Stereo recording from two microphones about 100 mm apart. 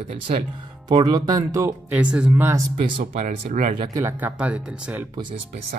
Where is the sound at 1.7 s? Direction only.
15° right (ahead or behind).